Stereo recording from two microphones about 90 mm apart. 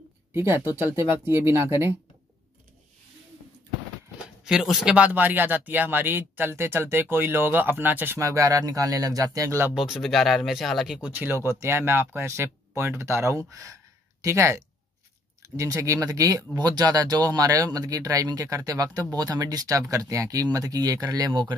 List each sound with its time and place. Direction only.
0.3 s speech: 25° right (ahead or behind)
4.5 s speech: 5° right (ahead or behind)
4.9 s speech: 15° right (ahead or behind)
8.2 s speech: 40° right (ahead or behind)
9.8 s speech: 5° right (ahead or behind)
11.0 s speech: 20° right (ahead or behind)
11.3 s speech: 30° right (ahead or behind)
21.3 s speech: 60° right (ahead or behind)